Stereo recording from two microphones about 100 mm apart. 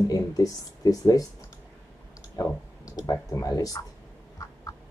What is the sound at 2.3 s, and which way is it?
Speech, 35° left (ahead or behind).